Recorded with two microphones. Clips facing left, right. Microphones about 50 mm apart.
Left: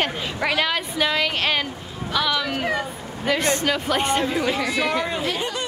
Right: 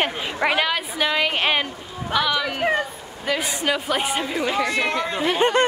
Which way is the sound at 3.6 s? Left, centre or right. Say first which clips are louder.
Left 1 dB; centre.